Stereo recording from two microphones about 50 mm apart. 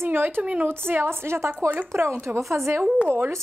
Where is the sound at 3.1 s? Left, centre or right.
Right.